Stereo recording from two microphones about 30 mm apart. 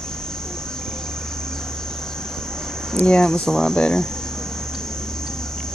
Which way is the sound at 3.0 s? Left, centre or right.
Left.